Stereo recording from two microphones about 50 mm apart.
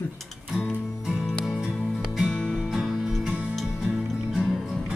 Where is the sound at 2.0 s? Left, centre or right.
Centre.